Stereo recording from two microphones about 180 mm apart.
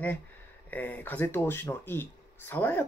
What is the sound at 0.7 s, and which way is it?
Speech, 10° left (ahead or behind).